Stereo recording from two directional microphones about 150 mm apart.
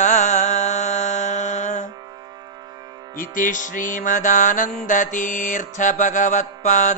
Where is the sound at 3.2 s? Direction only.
60° left (ahead or behind).